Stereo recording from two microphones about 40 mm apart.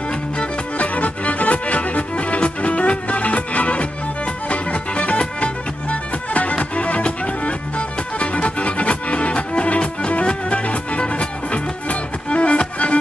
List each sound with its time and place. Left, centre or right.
0.4 s music: left
8.2 s music: left